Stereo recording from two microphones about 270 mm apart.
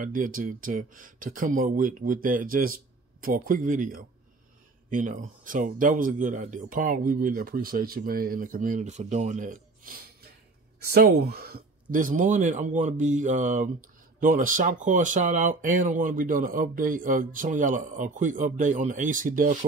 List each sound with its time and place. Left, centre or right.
0.0 s speech: right